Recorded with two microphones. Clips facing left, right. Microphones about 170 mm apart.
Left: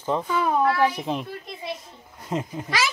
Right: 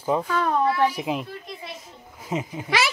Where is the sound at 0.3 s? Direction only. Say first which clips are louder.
Even; 10° left (ahead or behind).